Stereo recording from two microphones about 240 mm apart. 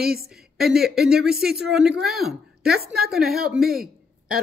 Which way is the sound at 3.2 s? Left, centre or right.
Right.